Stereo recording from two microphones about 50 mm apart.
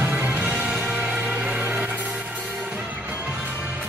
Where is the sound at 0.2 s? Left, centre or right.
Right.